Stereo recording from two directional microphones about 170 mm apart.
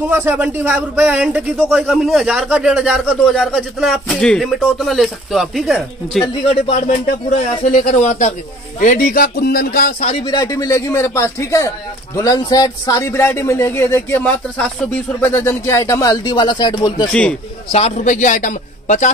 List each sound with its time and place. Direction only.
0.1 s speech: 15° right (ahead or behind)
6.2 s speech: 25° left (ahead or behind)
7.7 s speech: 45° left (ahead or behind)
10.2 s a man's voice: 25° left (ahead or behind)
17.1 s a man's voice: 5° left (ahead or behind)
17.6 s speech: 40° left (ahead or behind)